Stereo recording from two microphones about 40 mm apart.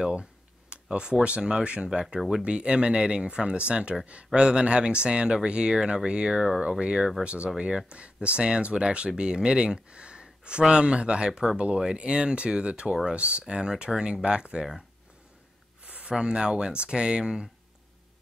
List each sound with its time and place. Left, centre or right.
0.1 s a sound: right
1.4 s speech: right
2.1 s speech: centre
2.4 s speech: right
4.3 s speech: right
15.8 s a sound: right
16.1 s speech: right